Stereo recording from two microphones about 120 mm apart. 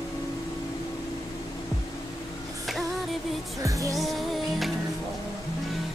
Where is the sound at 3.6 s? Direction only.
25° right (ahead or behind).